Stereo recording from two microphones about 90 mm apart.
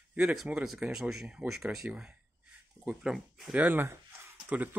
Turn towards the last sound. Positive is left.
turn(degrees=-20)  # may be behind; listen again after turning